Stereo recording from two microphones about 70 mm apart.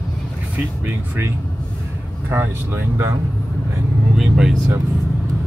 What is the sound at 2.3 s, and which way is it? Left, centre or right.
Speech, right.